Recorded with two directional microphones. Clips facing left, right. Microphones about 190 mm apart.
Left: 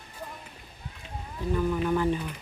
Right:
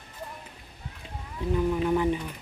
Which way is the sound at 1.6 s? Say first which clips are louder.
Right 1 dB; 20° right (ahead or behind).